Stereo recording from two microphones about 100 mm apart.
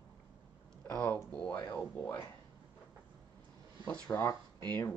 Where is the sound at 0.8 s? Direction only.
15° left (ahead or behind).